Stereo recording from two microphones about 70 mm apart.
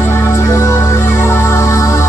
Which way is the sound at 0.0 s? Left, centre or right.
Left.